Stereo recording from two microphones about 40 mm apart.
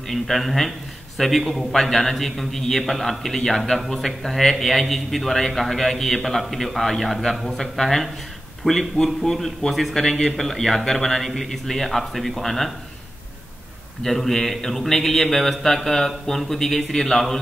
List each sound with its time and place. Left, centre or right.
0.1 s a man's voice: centre
14.0 s speech: centre